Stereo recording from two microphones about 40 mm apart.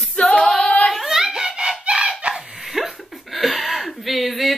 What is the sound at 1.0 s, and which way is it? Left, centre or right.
Speech, centre.